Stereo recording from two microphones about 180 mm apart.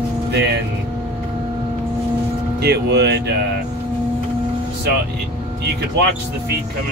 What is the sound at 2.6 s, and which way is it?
Speech, 65° right (ahead or behind).